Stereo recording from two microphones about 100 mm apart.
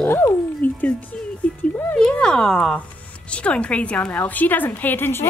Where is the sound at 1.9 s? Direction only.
10° left (ahead or behind).